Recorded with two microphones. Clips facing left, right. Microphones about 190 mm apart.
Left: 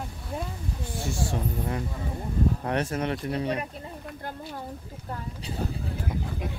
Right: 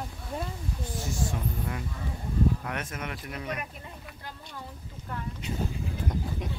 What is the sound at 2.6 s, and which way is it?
Speech, 35° left (ahead or behind).